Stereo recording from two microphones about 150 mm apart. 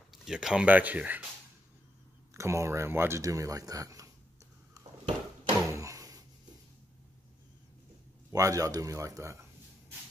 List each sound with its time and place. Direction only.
0.1 s speech: 5° right (ahead or behind)
2.3 s speech: 20° right (ahead or behind)
5.7 s drawer open or close: 20° right (ahead or behind)
8.3 s speech: 20° right (ahead or behind)